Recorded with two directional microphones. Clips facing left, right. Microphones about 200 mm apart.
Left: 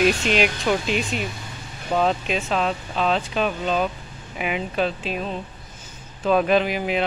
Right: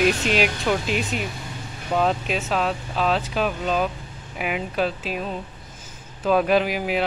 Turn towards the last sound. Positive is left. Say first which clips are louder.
# even
turn(degrees=-5)  # may be behind; listen again after turning